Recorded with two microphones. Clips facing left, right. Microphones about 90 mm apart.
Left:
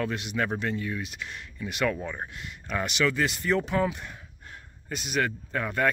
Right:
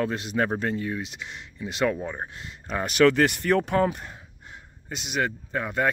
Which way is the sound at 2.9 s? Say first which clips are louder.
Right 9 dB; 60° right (ahead or behind).